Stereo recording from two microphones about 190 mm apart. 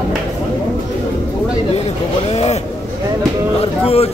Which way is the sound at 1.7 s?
35° left (ahead or behind).